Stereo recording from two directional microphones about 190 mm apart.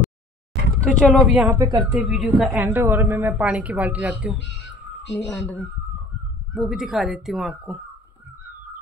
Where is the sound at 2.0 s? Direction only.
5° right (ahead or behind).